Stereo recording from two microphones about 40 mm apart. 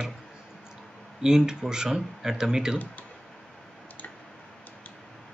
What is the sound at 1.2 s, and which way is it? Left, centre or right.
Speech, centre.